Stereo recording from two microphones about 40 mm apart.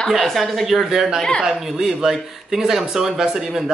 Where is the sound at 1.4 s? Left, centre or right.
Centre.